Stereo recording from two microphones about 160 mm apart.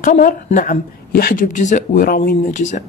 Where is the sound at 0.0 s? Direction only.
50° left (ahead or behind).